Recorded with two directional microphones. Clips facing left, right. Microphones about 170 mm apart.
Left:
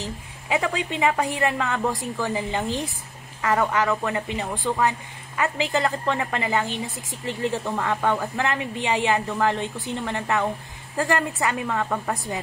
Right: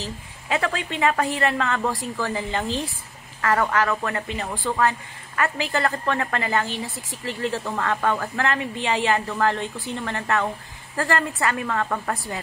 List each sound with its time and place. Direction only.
0.0 s a woman's voice: 15° left (ahead or behind)